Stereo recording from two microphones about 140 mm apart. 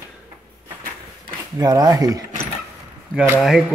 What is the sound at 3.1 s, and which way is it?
Speech, 5° right (ahead or behind).